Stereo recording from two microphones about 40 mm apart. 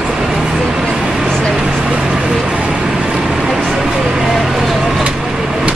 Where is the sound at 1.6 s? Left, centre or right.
Centre.